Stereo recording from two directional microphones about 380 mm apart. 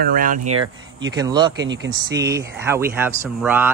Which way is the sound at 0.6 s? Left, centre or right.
Centre.